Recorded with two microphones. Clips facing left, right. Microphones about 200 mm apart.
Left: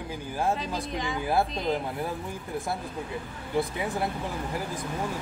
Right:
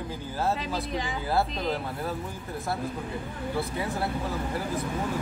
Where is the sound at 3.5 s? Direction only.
15° left (ahead or behind).